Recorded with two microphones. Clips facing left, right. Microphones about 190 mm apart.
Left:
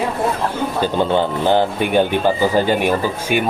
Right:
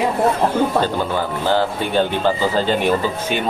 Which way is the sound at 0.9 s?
20° left (ahead or behind).